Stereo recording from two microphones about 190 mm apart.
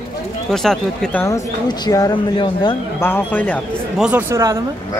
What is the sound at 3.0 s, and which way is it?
Speech, 10° left (ahead or behind).